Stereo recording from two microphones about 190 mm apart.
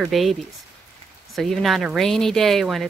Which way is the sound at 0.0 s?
Centre (ahead or behind).